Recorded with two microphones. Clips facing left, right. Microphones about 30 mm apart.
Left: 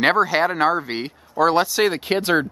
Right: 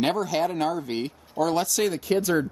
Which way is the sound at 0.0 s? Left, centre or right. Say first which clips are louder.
Left 7 dB; left.